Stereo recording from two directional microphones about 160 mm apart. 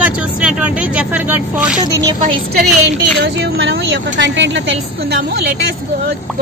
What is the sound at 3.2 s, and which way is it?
Speech, 90° right.